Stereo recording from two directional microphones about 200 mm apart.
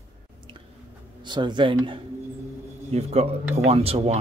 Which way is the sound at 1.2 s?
20° right (ahead or behind).